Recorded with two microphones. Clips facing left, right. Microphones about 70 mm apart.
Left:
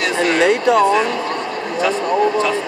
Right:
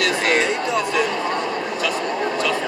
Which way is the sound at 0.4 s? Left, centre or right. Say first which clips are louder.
Left 7 dB; left.